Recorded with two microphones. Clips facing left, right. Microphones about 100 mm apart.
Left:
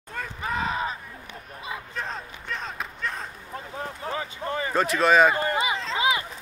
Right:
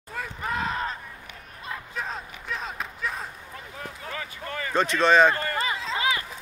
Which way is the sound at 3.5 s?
30° left (ahead or behind).